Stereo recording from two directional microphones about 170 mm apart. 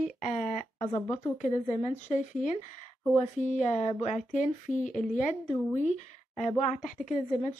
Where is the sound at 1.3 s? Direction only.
45° left (ahead or behind).